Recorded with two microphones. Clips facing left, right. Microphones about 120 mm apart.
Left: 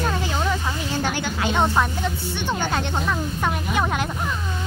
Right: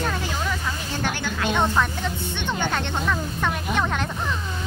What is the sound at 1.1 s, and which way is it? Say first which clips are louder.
Speech: left 1 dB; 15° left (ahead or behind).